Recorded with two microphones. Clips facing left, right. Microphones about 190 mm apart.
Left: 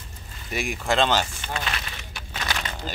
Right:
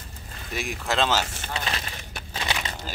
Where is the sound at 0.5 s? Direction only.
Centre (ahead or behind).